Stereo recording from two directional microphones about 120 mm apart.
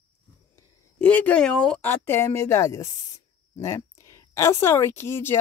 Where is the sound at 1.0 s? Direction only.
10° left (ahead or behind).